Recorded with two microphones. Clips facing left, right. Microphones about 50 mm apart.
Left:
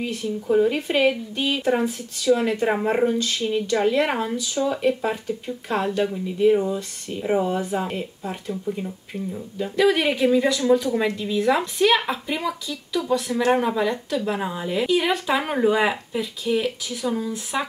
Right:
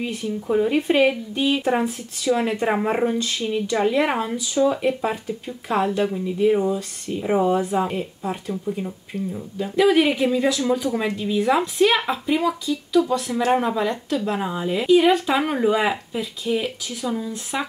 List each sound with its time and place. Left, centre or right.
0.0 s speech: centre
1.8 s speech: right
2.4 s speech: centre
8.5 s speech: centre
11.0 s speech: centre
13.0 s speech: right
13.7 s speech: centre